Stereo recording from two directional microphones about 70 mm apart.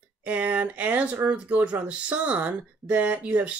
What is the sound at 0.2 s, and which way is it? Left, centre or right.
Speech, centre.